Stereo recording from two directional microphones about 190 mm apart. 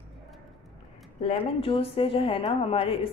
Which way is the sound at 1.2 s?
30° left (ahead or behind).